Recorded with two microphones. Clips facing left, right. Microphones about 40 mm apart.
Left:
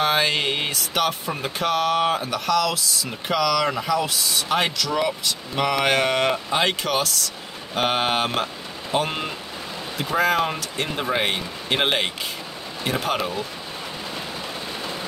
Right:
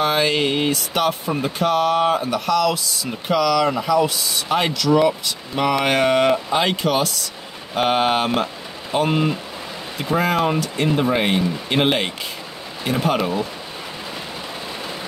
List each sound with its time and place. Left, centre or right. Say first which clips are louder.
0.0 s speech: right 2 dB; centre